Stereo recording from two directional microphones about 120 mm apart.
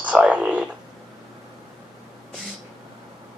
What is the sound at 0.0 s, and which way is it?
Speech, 10° right (ahead or behind).